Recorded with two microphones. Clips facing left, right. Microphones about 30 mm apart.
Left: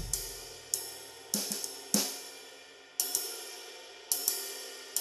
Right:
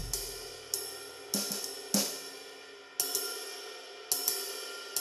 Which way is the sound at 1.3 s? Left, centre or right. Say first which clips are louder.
Right 1 dB; centre.